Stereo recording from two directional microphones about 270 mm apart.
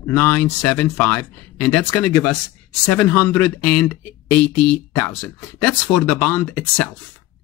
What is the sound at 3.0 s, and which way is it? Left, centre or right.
Speech, centre.